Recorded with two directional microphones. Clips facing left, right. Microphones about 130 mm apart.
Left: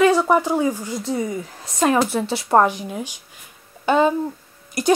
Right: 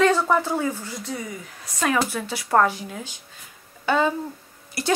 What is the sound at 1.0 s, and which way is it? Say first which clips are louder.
A woman's voice: left 8 dB; 30° left (ahead or behind).